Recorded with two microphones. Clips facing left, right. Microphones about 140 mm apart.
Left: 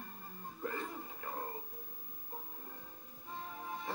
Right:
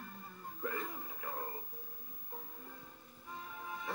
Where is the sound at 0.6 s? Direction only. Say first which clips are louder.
Even; 30° left (ahead or behind).